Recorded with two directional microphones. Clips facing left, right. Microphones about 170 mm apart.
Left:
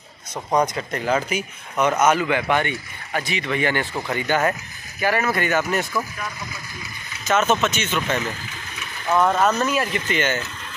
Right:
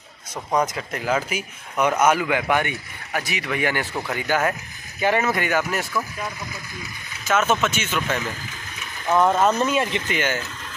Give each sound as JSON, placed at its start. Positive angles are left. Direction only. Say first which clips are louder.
{"t": 0.7, "sound": "speech", "louder": "left 2 dB", "side_deg": -5}
{"t": 5.0, "sound": "speech", "louder": "even", "side_deg": -20}
{"t": 7.2, "sound": "speech", "louder": "left 1 dB", "side_deg": -5}
{"t": 9.3, "sound": "speech", "louder": "right 1 dB", "side_deg": -25}
{"t": 10.0, "sound": "speech", "louder": "left 2 dB", "side_deg": -10}